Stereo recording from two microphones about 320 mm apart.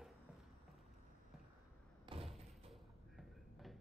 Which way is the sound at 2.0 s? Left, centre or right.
Centre.